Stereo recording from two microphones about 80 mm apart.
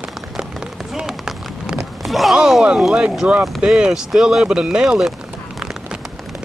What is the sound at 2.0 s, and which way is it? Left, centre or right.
Speech, centre.